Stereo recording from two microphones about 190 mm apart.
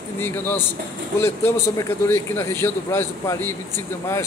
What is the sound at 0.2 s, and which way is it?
A man's voice, 10° left (ahead or behind).